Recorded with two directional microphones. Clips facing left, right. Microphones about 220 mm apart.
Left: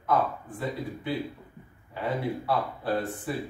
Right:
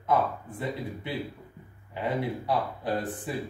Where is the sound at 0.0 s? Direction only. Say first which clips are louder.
Even; 20° right (ahead or behind).